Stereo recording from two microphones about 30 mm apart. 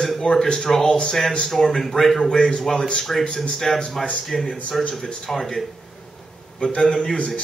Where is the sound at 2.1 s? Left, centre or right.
Centre.